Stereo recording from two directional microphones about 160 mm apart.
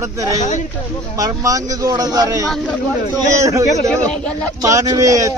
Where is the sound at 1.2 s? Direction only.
20° right (ahead or behind).